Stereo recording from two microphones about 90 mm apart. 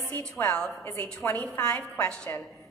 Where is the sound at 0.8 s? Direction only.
25° left (ahead or behind).